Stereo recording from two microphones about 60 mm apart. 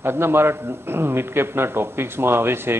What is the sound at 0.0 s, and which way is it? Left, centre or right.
A man's voice, right.